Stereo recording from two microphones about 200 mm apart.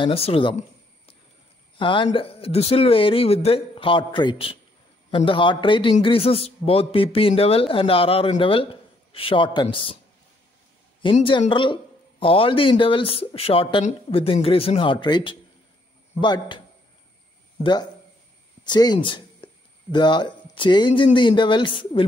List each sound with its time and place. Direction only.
0.0 s a man's voice: 30° left (ahead or behind)
1.8 s a man's voice: 25° left (ahead or behind)
11.0 s a man's voice: 25° left (ahead or behind)
18.6 s speech: 20° left (ahead or behind)